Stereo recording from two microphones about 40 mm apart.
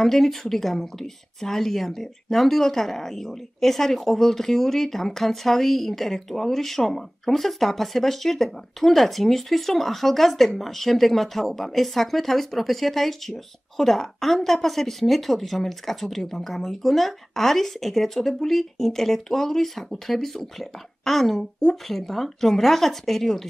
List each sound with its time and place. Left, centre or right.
0.0 s speech: centre